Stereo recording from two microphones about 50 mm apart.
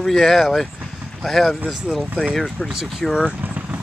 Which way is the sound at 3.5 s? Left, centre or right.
Right.